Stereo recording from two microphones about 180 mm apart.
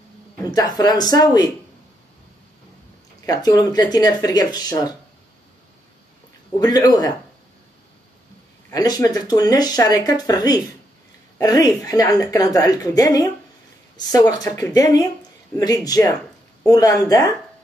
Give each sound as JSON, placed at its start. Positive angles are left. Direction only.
{"t": 0.5, "sound": "speech", "side_deg": 20}
{"t": 3.3, "sound": "speech", "side_deg": 20}
{"t": 6.6, "sound": "speech", "side_deg": 20}
{"t": 8.6, "sound": "speech", "side_deg": 20}